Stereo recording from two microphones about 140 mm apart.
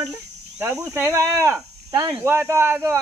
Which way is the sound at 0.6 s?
15° right (ahead or behind).